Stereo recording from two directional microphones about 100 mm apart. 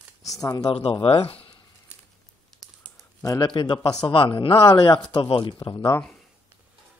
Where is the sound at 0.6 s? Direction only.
85° left.